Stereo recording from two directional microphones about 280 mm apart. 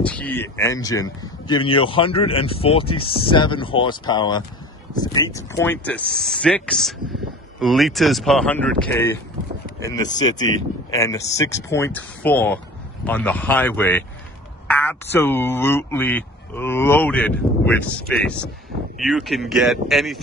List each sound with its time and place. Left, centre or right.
0.0 s speech: centre